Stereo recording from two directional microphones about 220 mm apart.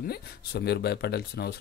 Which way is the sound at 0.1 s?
45° left (ahead or behind).